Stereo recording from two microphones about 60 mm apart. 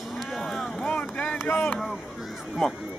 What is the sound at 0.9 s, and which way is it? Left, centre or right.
Speech, centre.